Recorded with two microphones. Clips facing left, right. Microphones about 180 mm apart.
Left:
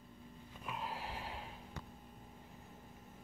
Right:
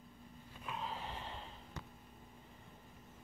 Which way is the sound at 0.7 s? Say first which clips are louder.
Even; 5° left (ahead or behind).